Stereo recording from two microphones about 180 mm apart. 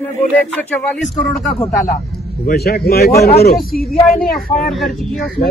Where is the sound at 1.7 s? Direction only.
45° left (ahead or behind).